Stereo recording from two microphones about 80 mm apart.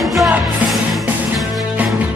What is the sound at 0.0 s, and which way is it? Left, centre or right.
Music, centre.